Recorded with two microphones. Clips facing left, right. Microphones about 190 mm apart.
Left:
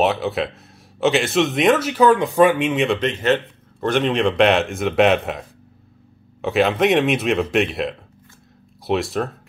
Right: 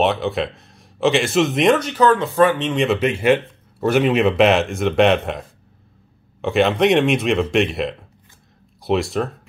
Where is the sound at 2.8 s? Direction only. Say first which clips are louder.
Right 2 dB; 5° right (ahead or behind).